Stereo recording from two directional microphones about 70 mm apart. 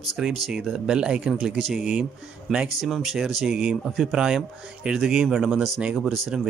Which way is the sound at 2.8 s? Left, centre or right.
Centre.